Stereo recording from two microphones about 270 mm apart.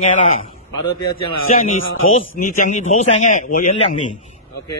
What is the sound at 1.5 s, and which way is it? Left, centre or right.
A man's voice, left.